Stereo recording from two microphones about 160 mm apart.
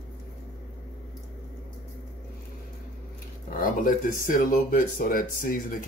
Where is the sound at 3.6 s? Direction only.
60° left (ahead or behind).